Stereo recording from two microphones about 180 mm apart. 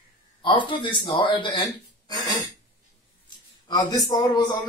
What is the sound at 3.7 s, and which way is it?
Speech, 25° left (ahead or behind).